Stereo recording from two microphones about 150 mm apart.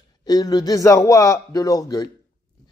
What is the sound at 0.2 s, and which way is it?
A man's voice, 25° left (ahead or behind).